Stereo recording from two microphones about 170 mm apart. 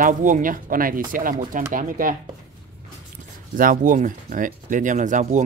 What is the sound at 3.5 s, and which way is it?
Speech, 55° right (ahead or behind).